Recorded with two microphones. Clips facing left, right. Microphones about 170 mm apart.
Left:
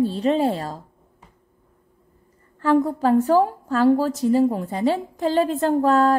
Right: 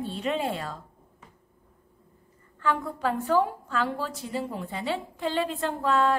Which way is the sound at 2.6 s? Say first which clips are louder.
Left 9 dB; 40° left (ahead or behind).